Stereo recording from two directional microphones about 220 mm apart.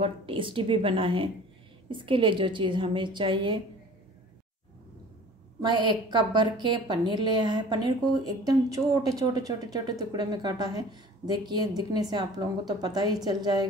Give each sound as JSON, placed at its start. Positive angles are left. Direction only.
{"t": 0.0, "sound": "a woman's voice", "side_deg": -25}
{"t": 5.6, "sound": "a woman's voice", "side_deg": -20}